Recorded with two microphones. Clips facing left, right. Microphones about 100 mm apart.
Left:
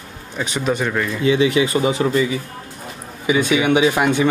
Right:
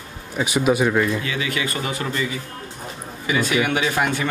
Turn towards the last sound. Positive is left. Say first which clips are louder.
# left 6 dB
turn(degrees=15)  # may be behind; listen again after turning